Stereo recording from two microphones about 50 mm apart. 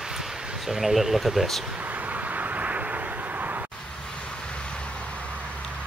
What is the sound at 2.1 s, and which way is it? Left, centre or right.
Vehicle, right.